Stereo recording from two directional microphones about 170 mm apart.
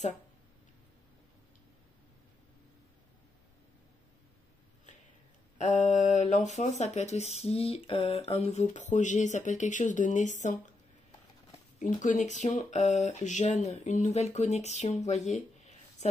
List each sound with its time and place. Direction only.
5.6 s speech: 45° left (ahead or behind)
12.0 s speech: 45° left (ahead or behind)